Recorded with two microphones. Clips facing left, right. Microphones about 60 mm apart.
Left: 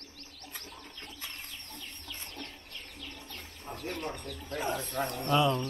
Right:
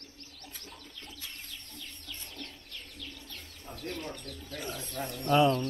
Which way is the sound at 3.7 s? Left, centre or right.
Centre.